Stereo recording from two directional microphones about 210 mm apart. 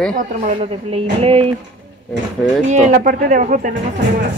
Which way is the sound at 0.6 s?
25° right (ahead or behind).